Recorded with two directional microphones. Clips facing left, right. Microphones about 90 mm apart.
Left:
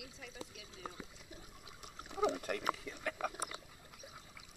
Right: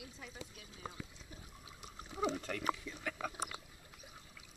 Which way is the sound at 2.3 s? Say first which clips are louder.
Even; 10° left (ahead or behind).